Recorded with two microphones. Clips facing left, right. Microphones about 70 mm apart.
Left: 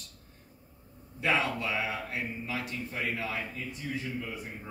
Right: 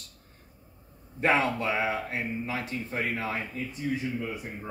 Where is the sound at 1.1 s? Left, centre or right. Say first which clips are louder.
Right 4 dB; right.